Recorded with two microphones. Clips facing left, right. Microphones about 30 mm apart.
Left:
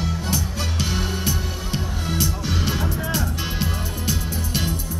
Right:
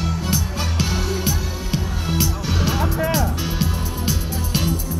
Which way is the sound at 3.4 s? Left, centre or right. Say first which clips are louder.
Right 2 dB; centre.